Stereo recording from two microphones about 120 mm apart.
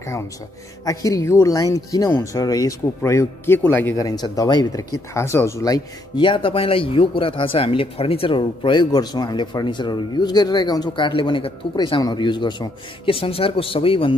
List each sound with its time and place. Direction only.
0.8 s speech: 25° left (ahead or behind)
3.9 s speech: 35° left (ahead or behind)
5.1 s speech: 20° left (ahead or behind)
6.2 s speech: 45° left (ahead or behind)